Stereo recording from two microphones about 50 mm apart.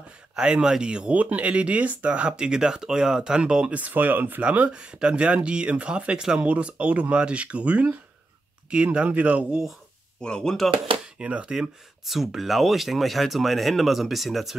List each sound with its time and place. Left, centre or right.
0.4 s speech: centre
3.7 s speech: right
4.4 s speech: right
10.2 s speech: centre
11.1 s speech: right
12.1 s speech: centre